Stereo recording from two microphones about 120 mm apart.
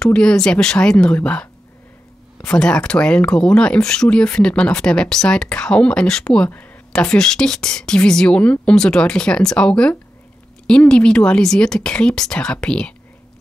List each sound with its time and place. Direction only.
0.0 s speech: 5° left (ahead or behind)